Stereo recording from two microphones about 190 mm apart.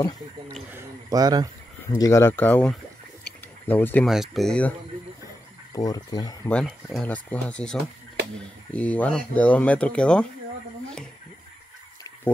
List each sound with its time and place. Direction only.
0.6 s speech: 10° right (ahead or behind)
1.9 s speech: 15° left (ahead or behind)
4.1 s speech: centre (ahead or behind)
5.7 s speech: 20° left (ahead or behind)
6.5 s speech: centre (ahead or behind)